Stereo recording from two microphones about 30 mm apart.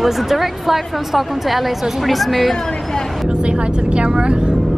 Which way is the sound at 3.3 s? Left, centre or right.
Right.